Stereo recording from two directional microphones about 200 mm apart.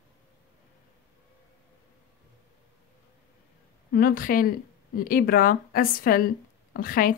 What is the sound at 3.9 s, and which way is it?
A woman's voice, 45° left (ahead or behind).